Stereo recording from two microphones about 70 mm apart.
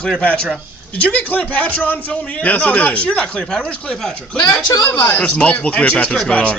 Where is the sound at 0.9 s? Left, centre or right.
Centre.